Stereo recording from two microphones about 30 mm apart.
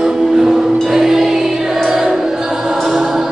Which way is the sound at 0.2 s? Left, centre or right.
Centre.